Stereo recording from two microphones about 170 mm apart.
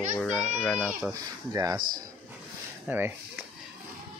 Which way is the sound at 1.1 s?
20° right (ahead or behind).